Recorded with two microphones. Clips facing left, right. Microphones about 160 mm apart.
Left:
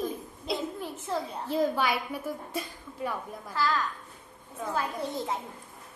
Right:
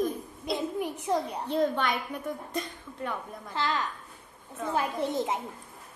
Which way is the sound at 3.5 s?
20° right (ahead or behind).